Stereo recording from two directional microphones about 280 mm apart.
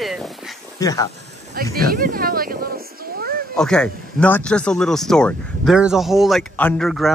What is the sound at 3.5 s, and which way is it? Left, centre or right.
Speech, centre.